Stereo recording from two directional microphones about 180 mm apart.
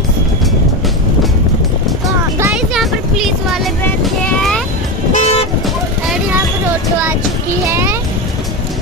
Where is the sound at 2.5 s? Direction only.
Centre (ahead or behind).